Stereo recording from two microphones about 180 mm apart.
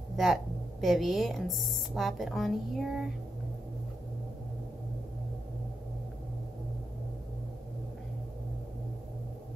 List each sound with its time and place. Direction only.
0.2 s a woman's voice: centre (ahead or behind)